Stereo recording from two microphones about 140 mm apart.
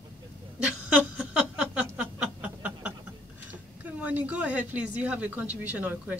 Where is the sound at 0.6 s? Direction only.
5° right (ahead or behind).